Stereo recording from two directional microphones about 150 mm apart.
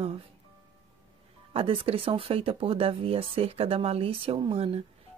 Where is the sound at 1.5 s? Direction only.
40° right (ahead or behind).